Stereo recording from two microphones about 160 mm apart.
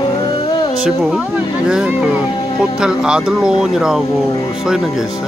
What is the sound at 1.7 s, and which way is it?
Speech, 5° right (ahead or behind).